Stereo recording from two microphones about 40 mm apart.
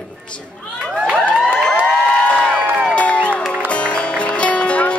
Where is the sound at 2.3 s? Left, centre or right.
Left.